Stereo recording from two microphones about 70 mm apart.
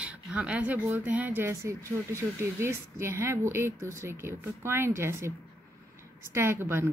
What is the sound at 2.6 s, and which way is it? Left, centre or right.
A woman's voice, right.